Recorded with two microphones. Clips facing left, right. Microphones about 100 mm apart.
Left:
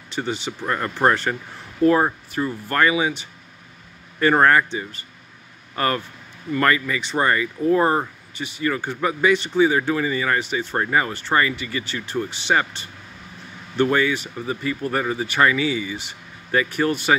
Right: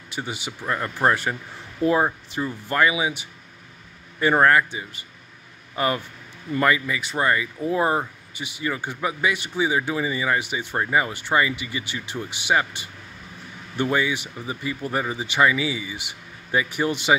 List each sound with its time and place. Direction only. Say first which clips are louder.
0.1 s speech: left 5 dB; 10° right (ahead or behind)
0.7 s speech: left 2 dB; centre (ahead or behind)
1.8 s speech: left 3 dB; 15° right (ahead or behind)